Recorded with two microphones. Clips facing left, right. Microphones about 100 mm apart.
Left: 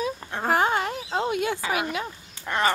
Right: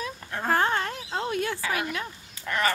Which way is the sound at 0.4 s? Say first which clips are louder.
Left 2 dB; 15° left (ahead or behind).